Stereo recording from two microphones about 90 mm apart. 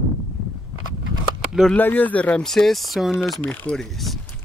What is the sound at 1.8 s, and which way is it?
Speech, 20° left (ahead or behind).